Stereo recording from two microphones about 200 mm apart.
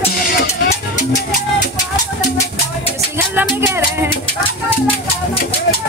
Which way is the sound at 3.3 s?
10° right (ahead or behind).